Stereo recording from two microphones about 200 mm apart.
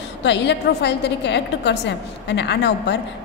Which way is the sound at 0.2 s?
60° left (ahead or behind).